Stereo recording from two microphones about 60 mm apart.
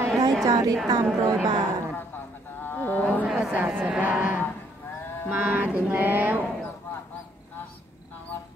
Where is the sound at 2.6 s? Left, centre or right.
Left.